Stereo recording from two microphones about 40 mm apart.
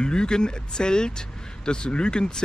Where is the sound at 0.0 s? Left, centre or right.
Left.